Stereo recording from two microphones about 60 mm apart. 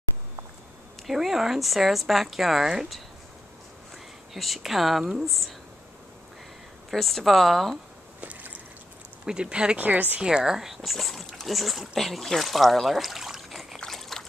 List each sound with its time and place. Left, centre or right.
1.0 s speech: centre
4.3 s speech: centre
6.9 s speech: centre
8.2 s a sound: right
9.2 s speech: centre
9.8 s speech: right
10.2 s speech: centre
13.7 s trickle: centre